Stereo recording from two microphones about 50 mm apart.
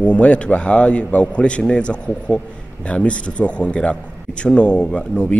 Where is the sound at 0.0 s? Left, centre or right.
Left.